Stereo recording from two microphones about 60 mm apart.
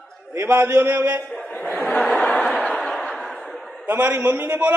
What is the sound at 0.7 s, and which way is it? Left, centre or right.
Speech, right.